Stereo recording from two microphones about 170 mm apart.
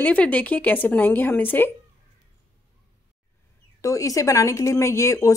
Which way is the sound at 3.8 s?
20° left (ahead or behind).